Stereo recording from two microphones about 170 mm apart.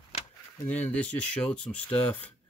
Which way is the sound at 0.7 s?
10° left (ahead or behind).